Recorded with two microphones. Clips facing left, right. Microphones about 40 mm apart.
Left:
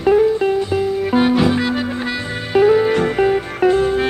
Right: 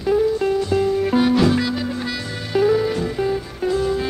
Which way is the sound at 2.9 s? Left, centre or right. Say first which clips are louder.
Left 6 dB; left.